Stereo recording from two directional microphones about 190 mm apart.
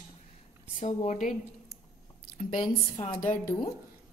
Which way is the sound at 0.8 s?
40° left (ahead or behind).